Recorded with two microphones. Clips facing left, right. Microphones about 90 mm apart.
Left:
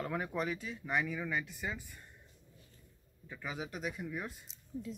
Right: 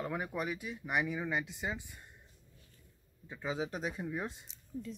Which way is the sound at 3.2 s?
25° right (ahead or behind).